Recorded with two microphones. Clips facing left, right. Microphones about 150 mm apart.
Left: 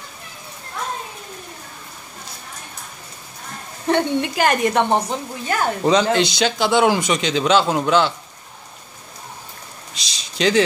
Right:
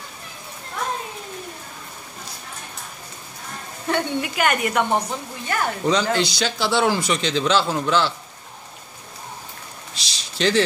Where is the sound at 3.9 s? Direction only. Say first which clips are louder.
Left 5 dB; 35° left (ahead or behind); by 8.1 s 20° left (ahead or behind).